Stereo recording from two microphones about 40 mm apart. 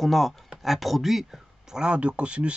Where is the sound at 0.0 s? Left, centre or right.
Centre.